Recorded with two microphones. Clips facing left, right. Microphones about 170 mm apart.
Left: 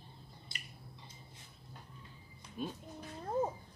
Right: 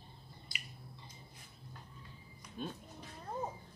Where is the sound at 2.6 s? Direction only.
5° left (ahead or behind).